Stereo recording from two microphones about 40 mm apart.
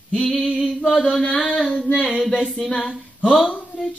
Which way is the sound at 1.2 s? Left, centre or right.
Left.